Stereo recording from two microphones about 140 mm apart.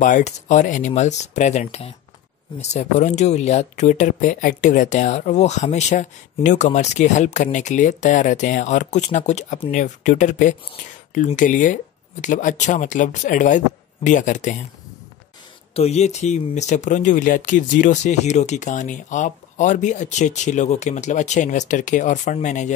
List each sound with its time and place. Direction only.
0.0 s speech: 65° left (ahead or behind)
15.7 s speech: 50° left (ahead or behind)